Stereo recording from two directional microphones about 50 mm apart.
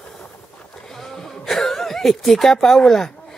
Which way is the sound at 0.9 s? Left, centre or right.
Centre.